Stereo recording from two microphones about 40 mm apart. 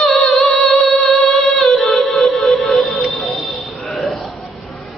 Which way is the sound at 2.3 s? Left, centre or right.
Centre.